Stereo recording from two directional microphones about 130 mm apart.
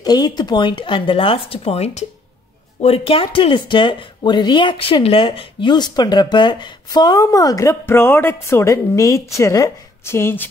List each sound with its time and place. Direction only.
0.0 s speech: 30° left (ahead or behind); by 10.5 s 15° left (ahead or behind)